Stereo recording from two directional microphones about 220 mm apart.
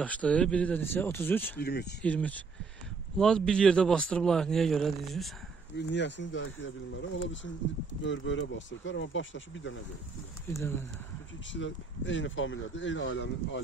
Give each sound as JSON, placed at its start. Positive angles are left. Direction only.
{"t": 0.0, "sound": "speech", "side_deg": 5}
{"t": 1.6, "sound": "speech", "side_deg": 50}
{"t": 2.0, "sound": "a man's voice", "side_deg": 5}
{"t": 5.8, "sound": "speech", "side_deg": 55}
{"t": 8.0, "sound": "speech", "side_deg": 55}
{"t": 10.6, "sound": "speech", "side_deg": 10}
{"t": 11.5, "sound": "speech", "side_deg": 60}